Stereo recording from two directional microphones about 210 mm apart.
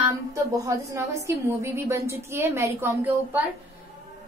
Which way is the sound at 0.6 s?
15° right (ahead or behind).